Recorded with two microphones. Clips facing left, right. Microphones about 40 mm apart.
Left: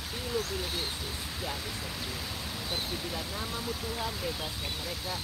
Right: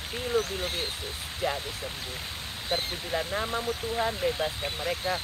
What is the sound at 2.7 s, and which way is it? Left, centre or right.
Speech, right.